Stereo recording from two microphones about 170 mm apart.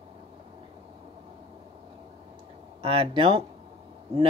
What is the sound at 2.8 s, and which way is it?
Speech, 35° right (ahead or behind).